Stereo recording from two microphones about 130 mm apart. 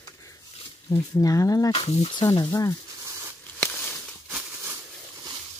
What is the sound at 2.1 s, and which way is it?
Speech, 30° left (ahead or behind).